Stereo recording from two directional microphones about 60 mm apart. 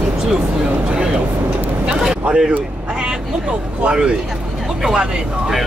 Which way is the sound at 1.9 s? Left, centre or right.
Centre.